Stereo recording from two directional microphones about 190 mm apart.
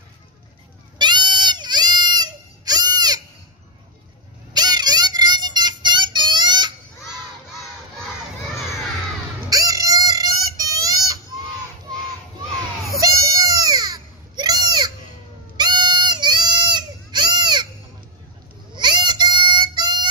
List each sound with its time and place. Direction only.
0.9 s goat: 25° right (ahead or behind)
4.6 s music: 20° right (ahead or behind)
9.5 s a sound: 20° right (ahead or behind)
12.8 s baby cry: 15° right (ahead or behind)
15.5 s goat: 20° right (ahead or behind)
18.8 s music: 25° right (ahead or behind)